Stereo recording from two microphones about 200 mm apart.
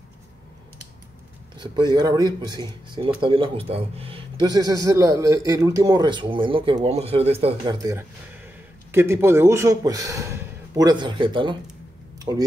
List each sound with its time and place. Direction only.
1.6 s speech: 20° right (ahead or behind)
8.9 s a man's voice: 15° right (ahead or behind)